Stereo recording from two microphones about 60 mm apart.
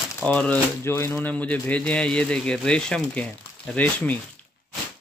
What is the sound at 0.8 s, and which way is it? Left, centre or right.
Speech, left.